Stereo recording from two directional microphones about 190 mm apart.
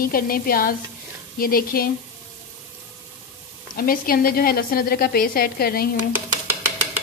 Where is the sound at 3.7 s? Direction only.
50° left (ahead or behind).